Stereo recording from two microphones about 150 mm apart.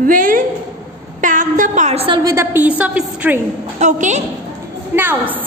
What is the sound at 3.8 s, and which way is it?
Speech, 50° right (ahead or behind).